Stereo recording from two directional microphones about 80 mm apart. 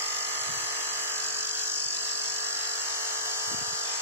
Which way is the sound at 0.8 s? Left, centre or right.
Left.